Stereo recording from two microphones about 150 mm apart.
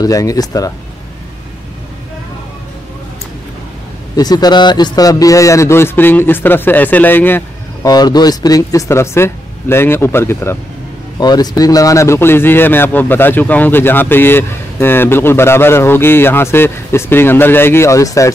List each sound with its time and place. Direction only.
0.0 s speech: 25° left (ahead or behind)
4.2 s a man's voice: 25° left (ahead or behind)
7.9 s a man's voice: 25° left (ahead or behind)
11.1 s a man's voice: 25° left (ahead or behind)